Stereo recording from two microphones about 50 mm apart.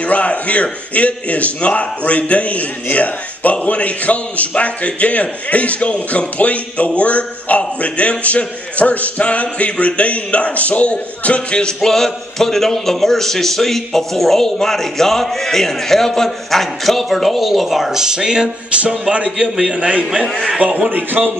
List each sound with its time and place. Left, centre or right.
0.0 s a man's voice: left
11.6 s a man's voice: centre
18.0 s music: centre
19.1 s a man's voice: centre; by 21.3 s right